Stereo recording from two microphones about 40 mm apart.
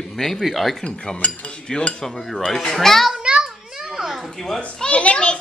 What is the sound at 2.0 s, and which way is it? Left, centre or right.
Speech, centre.